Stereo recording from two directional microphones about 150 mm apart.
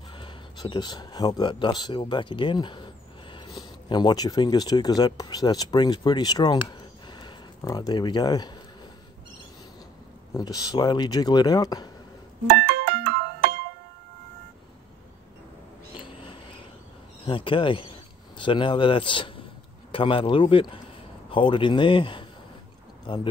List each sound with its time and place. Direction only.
0.1 s speech: 30° left (ahead or behind)
10.3 s speech: 25° left (ahead or behind)
12.4 s music: 90° right
16.0 s a sound: 35° left (ahead or behind)
17.3 s speech: 35° left (ahead or behind)